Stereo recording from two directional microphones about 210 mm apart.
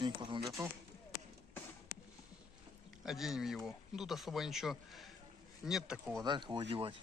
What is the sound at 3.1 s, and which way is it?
Speech, centre (ahead or behind).